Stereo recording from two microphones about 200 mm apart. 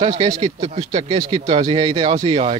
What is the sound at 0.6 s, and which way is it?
Speech, 35° right (ahead or behind).